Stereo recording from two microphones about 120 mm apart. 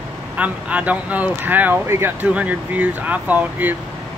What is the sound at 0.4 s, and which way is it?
Speech, 10° right (ahead or behind).